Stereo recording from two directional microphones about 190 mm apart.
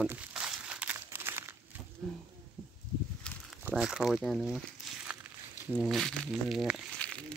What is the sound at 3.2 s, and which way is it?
Snake, 5° left (ahead or behind).